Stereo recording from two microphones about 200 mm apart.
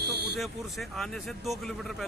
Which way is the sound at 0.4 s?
Centre (ahead or behind).